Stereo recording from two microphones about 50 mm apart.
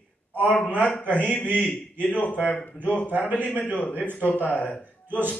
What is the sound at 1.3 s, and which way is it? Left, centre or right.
Speech, left.